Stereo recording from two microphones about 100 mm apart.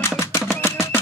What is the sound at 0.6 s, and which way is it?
Music, 20° left (ahead or behind).